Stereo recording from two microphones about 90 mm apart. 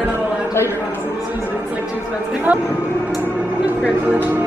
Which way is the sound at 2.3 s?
15° right (ahead or behind).